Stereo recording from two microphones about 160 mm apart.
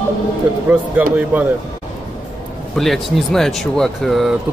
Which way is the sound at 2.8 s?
Centre (ahead or behind).